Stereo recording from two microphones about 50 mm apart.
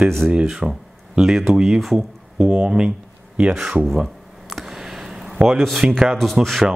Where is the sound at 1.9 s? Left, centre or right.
Centre.